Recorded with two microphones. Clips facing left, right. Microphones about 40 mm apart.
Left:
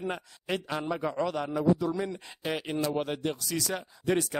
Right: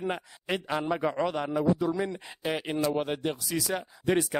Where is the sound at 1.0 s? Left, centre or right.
Right.